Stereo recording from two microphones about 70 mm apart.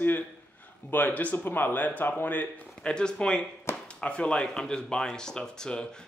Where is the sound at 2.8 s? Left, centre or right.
Centre.